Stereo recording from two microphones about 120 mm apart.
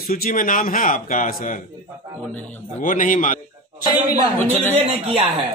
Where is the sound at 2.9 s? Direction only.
90° left.